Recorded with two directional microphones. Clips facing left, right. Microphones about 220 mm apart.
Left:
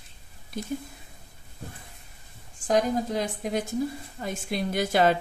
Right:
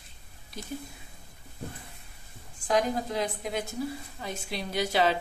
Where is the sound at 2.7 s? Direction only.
40° left (ahead or behind).